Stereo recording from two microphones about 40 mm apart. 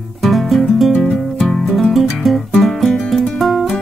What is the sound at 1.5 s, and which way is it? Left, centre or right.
Music, centre.